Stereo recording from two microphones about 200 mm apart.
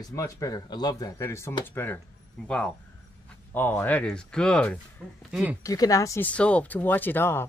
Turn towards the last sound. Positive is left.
turn(degrees=10)  # may be behind; listen again after turning